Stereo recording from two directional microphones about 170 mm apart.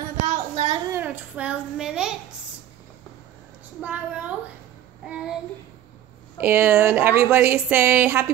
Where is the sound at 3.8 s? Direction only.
10° right (ahead or behind).